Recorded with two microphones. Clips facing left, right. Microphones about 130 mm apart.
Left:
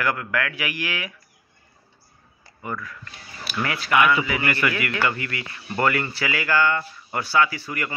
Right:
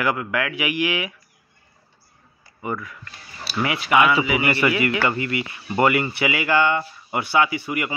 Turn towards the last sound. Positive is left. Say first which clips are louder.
# right 3 dB
turn(degrees=-20)  # may be behind; listen again after turning